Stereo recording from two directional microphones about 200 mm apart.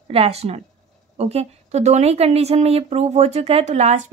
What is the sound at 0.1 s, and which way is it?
A woman's voice, 30° right (ahead or behind).